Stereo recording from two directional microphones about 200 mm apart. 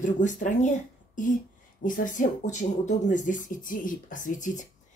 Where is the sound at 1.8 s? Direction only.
40° left (ahead or behind).